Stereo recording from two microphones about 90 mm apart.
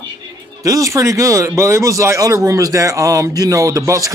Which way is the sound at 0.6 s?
35° right (ahead or behind).